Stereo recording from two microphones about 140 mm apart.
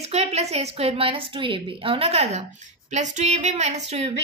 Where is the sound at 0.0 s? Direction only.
50° right (ahead or behind).